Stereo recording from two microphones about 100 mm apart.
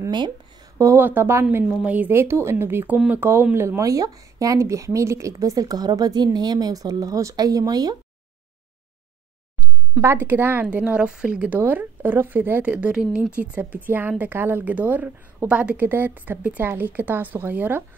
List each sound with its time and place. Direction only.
0.1 s a sound: 50° right (ahead or behind)
0.9 s a woman's voice: 20° right (ahead or behind); by 8.0 s 40° right (ahead or behind)
9.9 s speech: 20° right (ahead or behind)